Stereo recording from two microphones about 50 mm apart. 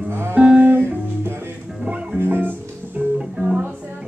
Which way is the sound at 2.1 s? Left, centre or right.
Right.